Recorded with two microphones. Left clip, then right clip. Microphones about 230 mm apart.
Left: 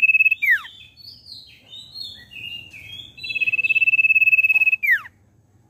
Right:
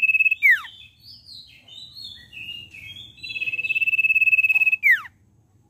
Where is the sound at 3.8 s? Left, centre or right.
Centre.